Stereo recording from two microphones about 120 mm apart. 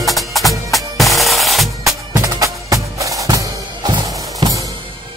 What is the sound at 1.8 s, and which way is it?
Music, 25° right (ahead or behind).